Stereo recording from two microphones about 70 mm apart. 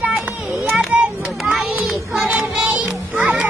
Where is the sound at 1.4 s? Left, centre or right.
Centre.